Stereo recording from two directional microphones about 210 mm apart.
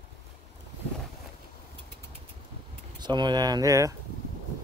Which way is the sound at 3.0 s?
20° right (ahead or behind).